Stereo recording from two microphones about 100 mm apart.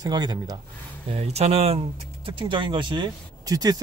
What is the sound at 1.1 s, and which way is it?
Speech, 90° right.